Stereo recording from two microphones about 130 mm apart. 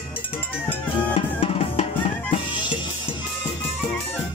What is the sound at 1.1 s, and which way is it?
Drum, 50° left (ahead or behind).